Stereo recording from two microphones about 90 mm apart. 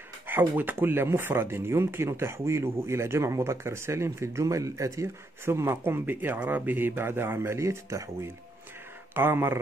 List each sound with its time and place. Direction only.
0.6 s speech: 25° right (ahead or behind)